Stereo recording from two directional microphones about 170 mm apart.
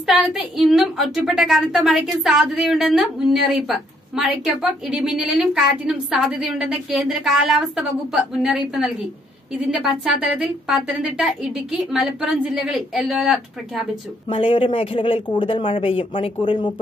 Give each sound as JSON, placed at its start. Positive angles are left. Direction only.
{"t": 0.0, "sound": "a woman's voice", "side_deg": 0}
{"t": 14.3, "sound": "speech", "side_deg": 30}